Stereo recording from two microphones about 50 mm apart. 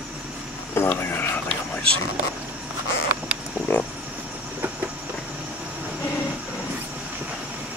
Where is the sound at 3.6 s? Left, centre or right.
Left.